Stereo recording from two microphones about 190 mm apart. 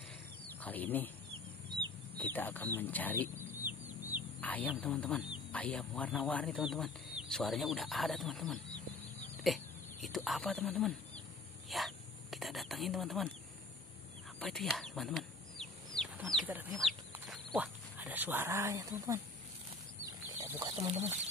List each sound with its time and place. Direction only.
0.6 s speech: 10° left (ahead or behind)
2.1 s speech: 10° left (ahead or behind)
3.5 s chicken: 10° right (ahead or behind)
4.4 s speech: 10° left (ahead or behind)
11.7 s a sound: centre (ahead or behind)
14.4 s chicken: centre (ahead or behind)
16.7 s speech: centre (ahead or behind); by 19.2 s 15° right (ahead or behind)
20.3 s a sound: 15° right (ahead or behind)
20.7 s speech: 35° right (ahead or behind)